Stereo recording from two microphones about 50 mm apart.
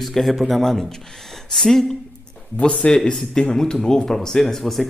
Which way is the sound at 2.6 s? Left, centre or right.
Centre.